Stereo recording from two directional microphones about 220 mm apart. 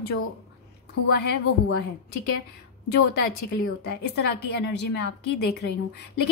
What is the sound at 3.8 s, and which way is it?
A woman's voice, 50° left (ahead or behind).